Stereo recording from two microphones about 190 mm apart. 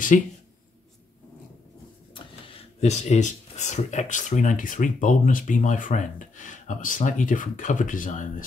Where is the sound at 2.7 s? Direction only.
35° left (ahead or behind).